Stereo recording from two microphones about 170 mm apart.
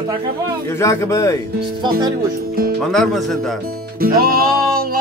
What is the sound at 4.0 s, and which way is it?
Music, 60° right (ahead or behind).